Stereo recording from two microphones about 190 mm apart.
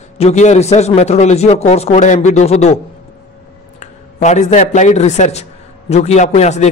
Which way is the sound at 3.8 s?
40° left (ahead or behind).